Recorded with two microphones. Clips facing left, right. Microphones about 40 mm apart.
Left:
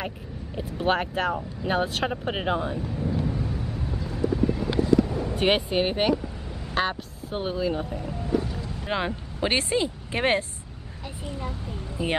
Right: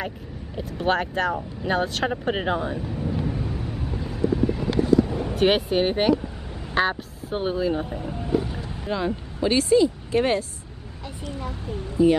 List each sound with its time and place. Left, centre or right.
0.7 s speech: centre
3.1 s thunder: centre
5.3 s speech: centre
7.8 s music: centre
8.8 s speech: left
11.3 s speech: centre